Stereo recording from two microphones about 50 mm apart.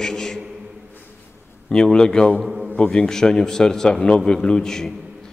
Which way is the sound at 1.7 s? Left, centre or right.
Centre.